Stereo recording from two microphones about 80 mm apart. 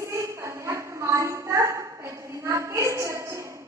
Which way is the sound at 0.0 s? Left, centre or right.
Right.